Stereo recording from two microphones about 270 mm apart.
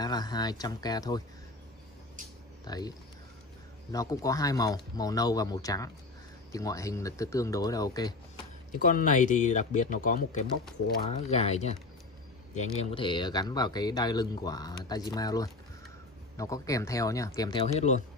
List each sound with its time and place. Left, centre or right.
0.0 s speech: centre
2.6 s speech: centre
3.9 s speech: centre
8.7 s speech: left